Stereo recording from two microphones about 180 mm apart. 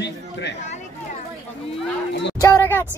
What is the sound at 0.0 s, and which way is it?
Speech, 75° left (ahead or behind).